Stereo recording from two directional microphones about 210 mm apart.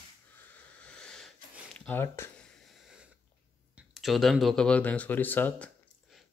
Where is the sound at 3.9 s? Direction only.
Centre (ahead or behind).